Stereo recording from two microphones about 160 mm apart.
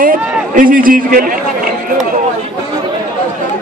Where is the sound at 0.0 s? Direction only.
60° right (ahead or behind).